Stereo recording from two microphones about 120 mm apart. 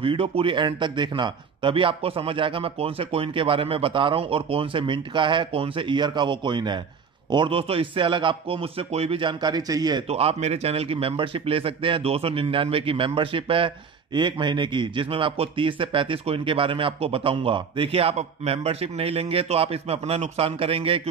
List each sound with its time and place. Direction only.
0.0 s a man's voice: 50° right (ahead or behind); by 10.0 s 35° right (ahead or behind)
10.0 s a man's voice: 55° right (ahead or behind)